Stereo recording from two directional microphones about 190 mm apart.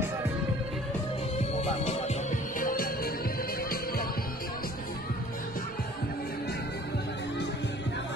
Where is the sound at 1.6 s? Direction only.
35° left (ahead or behind).